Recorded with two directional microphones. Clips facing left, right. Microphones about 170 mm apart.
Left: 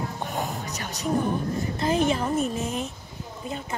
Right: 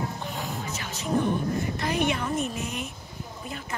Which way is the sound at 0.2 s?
45° left (ahead or behind).